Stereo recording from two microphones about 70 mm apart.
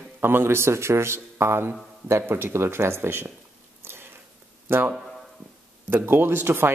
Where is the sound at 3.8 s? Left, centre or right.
Right.